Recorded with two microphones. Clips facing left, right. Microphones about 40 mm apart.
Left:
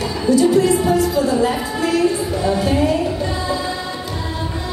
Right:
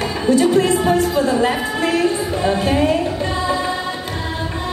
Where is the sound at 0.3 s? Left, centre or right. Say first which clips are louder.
Left 1 dB; right.